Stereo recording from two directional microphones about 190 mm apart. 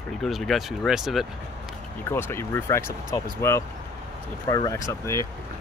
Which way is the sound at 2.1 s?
15° left (ahead or behind).